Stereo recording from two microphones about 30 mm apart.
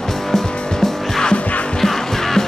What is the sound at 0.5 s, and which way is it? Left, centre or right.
Music, left.